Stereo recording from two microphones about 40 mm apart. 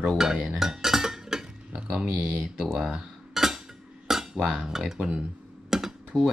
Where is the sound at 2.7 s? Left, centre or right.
Centre.